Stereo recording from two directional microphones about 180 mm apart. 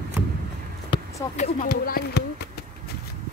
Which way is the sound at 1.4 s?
50° left (ahead or behind).